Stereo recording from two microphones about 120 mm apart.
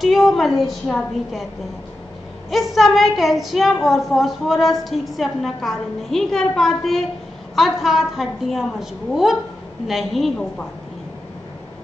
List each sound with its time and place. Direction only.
0.0 s a woman's voice: centre (ahead or behind)
2.5 s a woman's voice: centre (ahead or behind)